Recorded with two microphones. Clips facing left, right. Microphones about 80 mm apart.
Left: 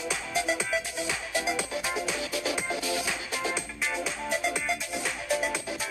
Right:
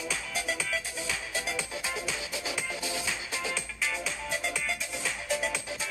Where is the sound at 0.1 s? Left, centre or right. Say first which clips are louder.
Left 7 dB; left.